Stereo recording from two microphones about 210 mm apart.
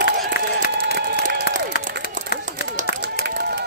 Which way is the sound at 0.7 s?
55° right (ahead or behind).